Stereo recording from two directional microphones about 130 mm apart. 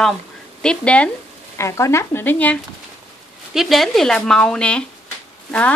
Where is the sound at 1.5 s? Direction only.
20° left (ahead or behind).